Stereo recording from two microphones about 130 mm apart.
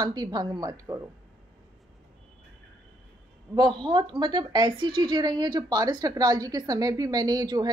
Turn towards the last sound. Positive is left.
turn(degrees=-30)  # may be behind; listen again after turning